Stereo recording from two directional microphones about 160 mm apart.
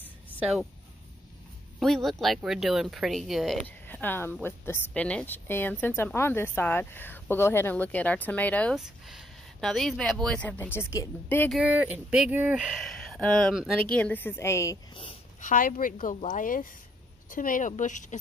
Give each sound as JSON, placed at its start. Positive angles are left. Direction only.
{"t": 0.4, "sound": "speech", "side_deg": 0}
{"t": 1.8, "sound": "speech", "side_deg": 0}
{"t": 3.6, "sound": "speech", "side_deg": 10}
{"t": 8.7, "sound": "speech", "side_deg": -5}
{"t": 11.5, "sound": "speech", "side_deg": -10}
{"t": 12.8, "sound": "speech", "side_deg": 0}
{"t": 13.9, "sound": "speech", "side_deg": 10}
{"t": 15.4, "sound": "a woman's voice", "side_deg": 60}